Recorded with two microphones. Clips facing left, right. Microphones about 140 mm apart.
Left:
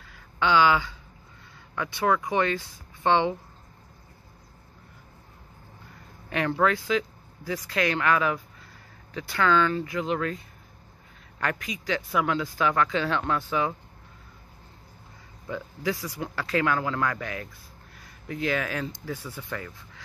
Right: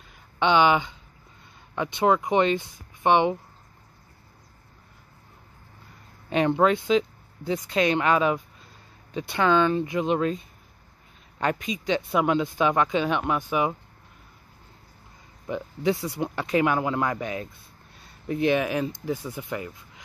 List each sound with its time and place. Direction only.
0.0 s a sound: 20° right (ahead or behind)
1.8 s speech: 20° right (ahead or behind)
6.3 s speech: 20° right (ahead or behind)
15.4 s speech: 20° right (ahead or behind)